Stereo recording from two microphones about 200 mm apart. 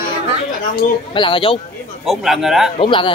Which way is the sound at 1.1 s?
25° left (ahead or behind).